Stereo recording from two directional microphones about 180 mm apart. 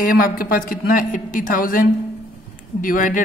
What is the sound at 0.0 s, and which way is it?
A man's voice, 50° left (ahead or behind).